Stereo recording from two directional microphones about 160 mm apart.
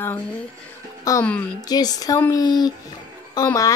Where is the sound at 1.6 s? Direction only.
25° left (ahead or behind).